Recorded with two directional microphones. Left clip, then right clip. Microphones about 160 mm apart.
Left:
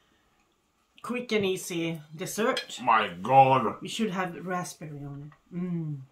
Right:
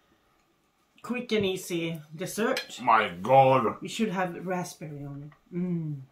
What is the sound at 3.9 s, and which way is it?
Speech, 30° left (ahead or behind).